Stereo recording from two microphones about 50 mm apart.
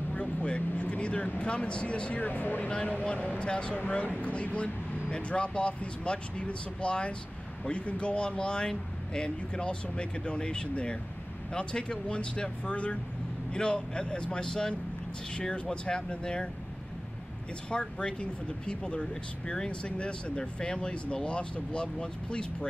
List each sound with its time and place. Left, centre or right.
0.1 s speech: left
2.7 s speech: left
17.6 s speech: centre